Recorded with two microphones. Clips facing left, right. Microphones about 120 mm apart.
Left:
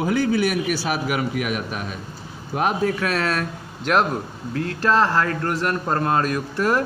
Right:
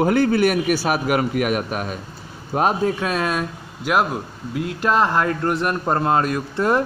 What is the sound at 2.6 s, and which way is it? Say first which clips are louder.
A man's voice: right 2 dB; 30° right (ahead or behind).